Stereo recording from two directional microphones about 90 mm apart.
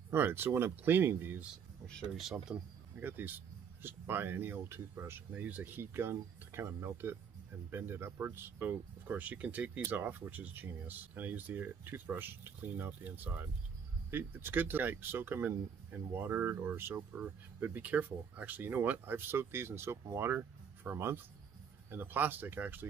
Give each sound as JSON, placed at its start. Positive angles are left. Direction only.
{"t": 0.1, "sound": "speech", "side_deg": -25}
{"t": 2.5, "sound": "speech", "side_deg": -15}